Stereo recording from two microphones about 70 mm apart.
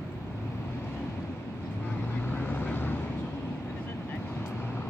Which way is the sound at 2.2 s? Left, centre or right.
Left.